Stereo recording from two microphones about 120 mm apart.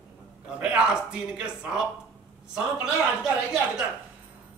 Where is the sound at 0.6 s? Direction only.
5° right (ahead or behind).